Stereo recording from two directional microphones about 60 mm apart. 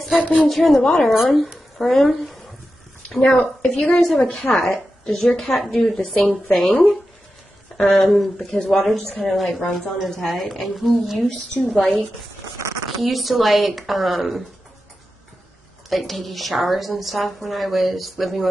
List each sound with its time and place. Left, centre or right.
0.1 s a woman's voice: left
0.5 s a woman's voice: centre
3.2 s a woman's voice: left
3.6 s a woman's voice: centre
8.0 s a woman's voice: centre
11.6 s a woman's voice: centre
13.0 s a woman's voice: centre
15.9 s a woman's voice: centre